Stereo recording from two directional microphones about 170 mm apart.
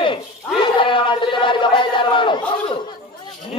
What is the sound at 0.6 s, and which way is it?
A man's voice, 30° left (ahead or behind).